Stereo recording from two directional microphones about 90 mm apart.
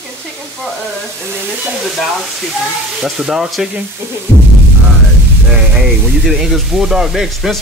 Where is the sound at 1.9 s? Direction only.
Centre (ahead or behind).